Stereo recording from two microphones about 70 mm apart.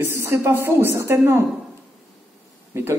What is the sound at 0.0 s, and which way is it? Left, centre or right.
Speech, right.